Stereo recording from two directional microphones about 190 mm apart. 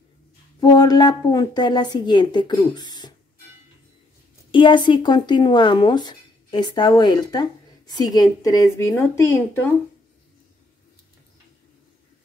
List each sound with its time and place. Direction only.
0.6 s speech: 20° left (ahead or behind)
4.5 s speech: 25° left (ahead or behind)